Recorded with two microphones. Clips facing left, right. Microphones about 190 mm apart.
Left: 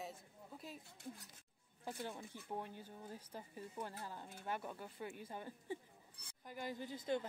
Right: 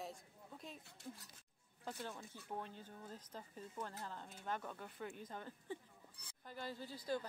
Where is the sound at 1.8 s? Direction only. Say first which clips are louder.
Left 2 dB; 15° left (ahead or behind).